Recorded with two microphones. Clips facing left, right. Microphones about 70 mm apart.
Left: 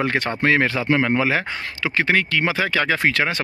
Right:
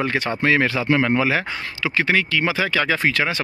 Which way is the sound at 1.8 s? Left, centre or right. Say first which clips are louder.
Even; left.